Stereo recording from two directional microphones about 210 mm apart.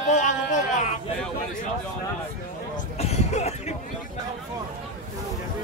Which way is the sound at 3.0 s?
30° left (ahead or behind).